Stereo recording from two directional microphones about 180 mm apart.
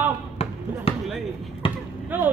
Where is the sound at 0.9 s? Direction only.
35° left (ahead or behind).